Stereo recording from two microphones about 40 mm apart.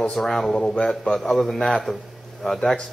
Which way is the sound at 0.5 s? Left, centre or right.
Centre.